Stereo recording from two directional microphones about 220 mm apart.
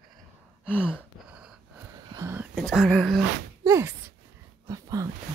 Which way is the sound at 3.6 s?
10° right (ahead or behind).